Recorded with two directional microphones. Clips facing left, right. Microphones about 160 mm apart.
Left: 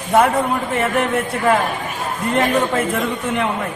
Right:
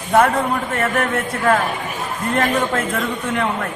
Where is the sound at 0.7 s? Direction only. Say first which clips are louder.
Left 3 dB; 5° left (ahead or behind).